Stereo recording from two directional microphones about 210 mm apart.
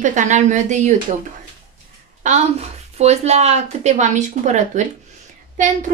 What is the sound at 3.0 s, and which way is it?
A woman's voice, 30° right (ahead or behind).